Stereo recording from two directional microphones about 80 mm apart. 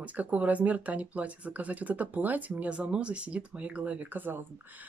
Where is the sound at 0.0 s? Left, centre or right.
Centre.